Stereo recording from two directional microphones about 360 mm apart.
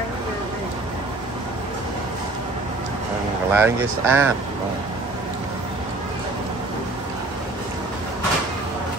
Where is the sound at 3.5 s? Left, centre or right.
Centre.